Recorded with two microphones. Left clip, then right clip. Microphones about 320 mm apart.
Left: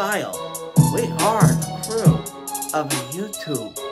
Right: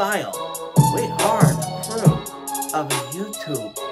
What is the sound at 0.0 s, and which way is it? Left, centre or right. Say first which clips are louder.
Speech: right 1 dB; centre.